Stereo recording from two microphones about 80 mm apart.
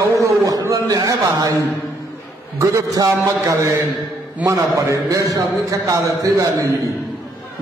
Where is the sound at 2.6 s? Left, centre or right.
Right.